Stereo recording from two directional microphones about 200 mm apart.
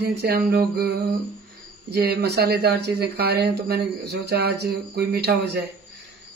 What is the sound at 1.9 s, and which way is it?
Speech, 55° right (ahead or behind).